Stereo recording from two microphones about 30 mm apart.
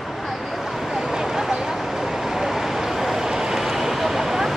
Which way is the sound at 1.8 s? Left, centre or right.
Centre.